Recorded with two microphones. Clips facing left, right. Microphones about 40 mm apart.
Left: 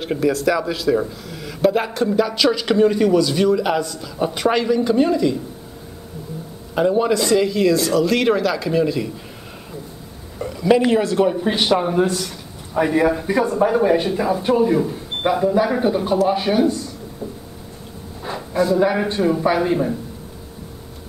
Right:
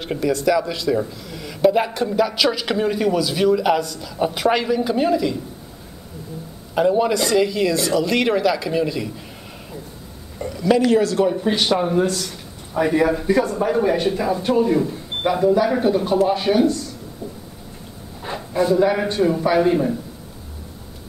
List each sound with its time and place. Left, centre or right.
0.0 s speech: centre
6.7 s speech: centre
10.4 s speech: centre
11.2 s a man's voice: centre
18.2 s a sound: centre
18.8 s speech: centre